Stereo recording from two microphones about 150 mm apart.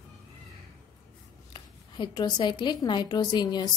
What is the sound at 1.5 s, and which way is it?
Speech, 30° left (ahead or behind).